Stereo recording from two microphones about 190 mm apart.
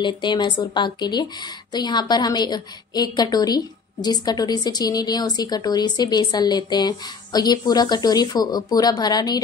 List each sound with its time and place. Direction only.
0.0 s a woman's voice: 25° left (ahead or behind)